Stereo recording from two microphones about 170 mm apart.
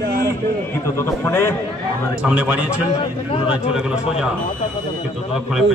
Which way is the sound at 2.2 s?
5° right (ahead or behind).